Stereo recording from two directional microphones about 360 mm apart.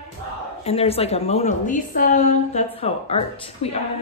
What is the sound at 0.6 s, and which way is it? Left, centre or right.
A woman's voice, centre.